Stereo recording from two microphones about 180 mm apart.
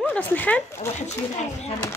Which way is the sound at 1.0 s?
40° left (ahead or behind).